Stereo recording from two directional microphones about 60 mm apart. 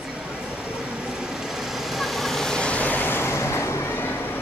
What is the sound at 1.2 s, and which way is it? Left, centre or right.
Vehicle, centre.